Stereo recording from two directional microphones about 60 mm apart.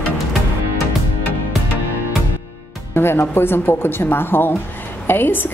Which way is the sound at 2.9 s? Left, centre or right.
Left.